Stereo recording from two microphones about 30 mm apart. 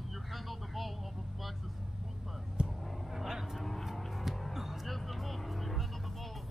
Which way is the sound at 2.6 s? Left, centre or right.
Right.